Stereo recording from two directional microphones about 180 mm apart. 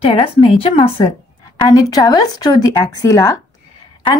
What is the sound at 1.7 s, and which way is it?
Speech, 20° left (ahead or behind).